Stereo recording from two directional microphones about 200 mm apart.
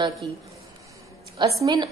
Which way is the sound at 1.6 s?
20° right (ahead or behind).